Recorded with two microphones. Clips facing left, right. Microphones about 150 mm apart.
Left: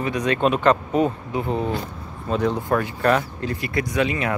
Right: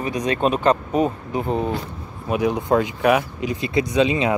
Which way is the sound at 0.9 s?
15° right (ahead or behind).